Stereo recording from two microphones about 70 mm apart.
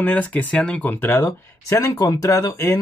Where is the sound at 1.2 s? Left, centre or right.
Left.